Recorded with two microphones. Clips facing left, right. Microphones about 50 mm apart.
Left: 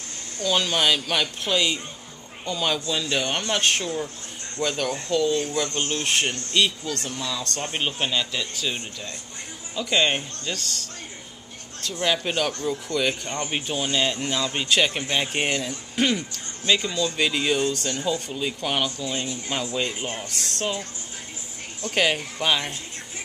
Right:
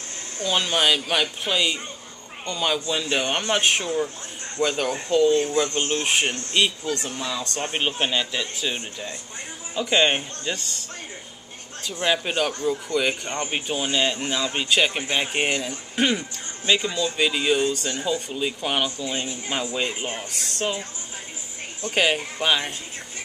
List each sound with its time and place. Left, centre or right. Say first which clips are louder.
0.5 s speech: even; centre
2.9 s speech: right 1 dB; centre
6.0 s speech: right 1 dB; centre
11.9 s speech: right 1 dB; centre
21.8 s speech: right 1 dB; centre